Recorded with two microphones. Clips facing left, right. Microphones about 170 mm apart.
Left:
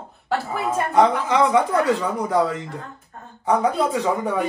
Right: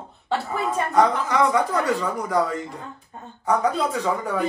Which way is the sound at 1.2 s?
25° left (ahead or behind).